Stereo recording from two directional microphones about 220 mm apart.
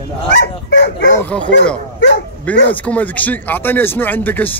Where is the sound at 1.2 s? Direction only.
5° left (ahead or behind).